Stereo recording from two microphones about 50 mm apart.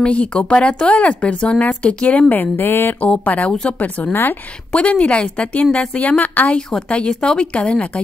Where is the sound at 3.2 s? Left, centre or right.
Left.